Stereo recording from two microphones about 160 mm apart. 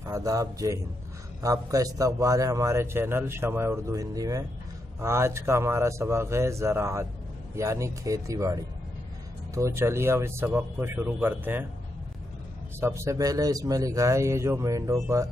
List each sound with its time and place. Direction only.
0.0 s a man's voice: 20° right (ahead or behind)
12.8 s a man's voice: 15° right (ahead or behind)